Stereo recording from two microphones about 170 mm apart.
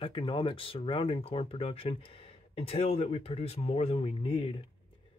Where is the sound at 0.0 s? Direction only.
30° left (ahead or behind).